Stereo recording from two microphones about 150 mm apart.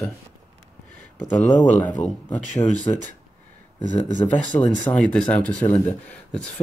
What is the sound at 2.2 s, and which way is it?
Speech, 10° left (ahead or behind).